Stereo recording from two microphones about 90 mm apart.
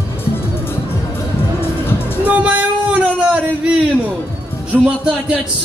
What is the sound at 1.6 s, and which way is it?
Music, 25° left (ahead or behind).